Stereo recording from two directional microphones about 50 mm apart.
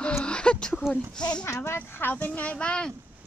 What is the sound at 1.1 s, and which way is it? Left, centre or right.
A child's voice, left.